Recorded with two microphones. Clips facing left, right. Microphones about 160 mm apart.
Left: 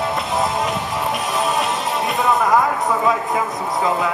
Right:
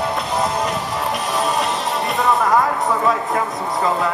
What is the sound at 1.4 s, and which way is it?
Music, centre (ahead or behind).